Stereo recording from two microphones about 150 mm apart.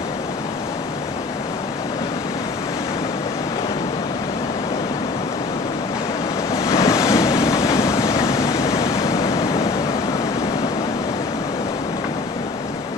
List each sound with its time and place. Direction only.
6.6 s waves: 25° left (ahead or behind)